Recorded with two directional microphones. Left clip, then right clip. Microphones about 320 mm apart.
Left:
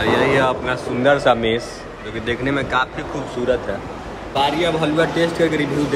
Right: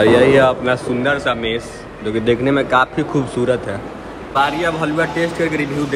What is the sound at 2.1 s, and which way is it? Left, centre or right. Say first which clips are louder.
Speech: right 6 dB; centre.